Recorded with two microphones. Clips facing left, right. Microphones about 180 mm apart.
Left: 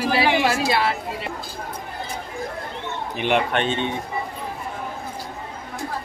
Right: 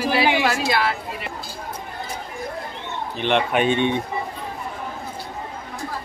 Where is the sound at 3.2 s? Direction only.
10° left (ahead or behind).